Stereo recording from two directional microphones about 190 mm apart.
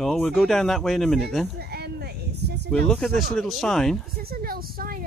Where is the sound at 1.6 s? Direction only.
55° right (ahead or behind).